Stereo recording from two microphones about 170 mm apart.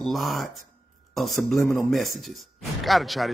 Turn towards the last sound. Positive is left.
turn(degrees=0)  # may be behind; listen again after turning